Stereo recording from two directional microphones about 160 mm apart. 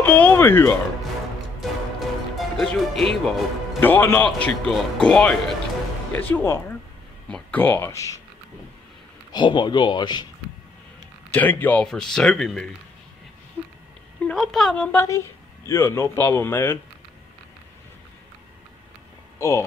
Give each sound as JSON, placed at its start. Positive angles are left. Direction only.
{"t": 0.0, "sound": "speech", "side_deg": 10}
{"t": 1.6, "sound": "music", "side_deg": 0}
{"t": 3.8, "sound": "speech", "side_deg": 15}
{"t": 9.3, "sound": "speech", "side_deg": 30}
{"t": 11.3, "sound": "speech", "side_deg": 10}
{"t": 14.2, "sound": "speech", "side_deg": 0}
{"t": 15.0, "sound": "speech", "side_deg": 20}
{"t": 19.3, "sound": "a sound", "side_deg": 20}